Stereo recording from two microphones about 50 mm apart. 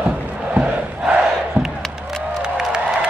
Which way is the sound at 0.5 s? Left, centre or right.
Right.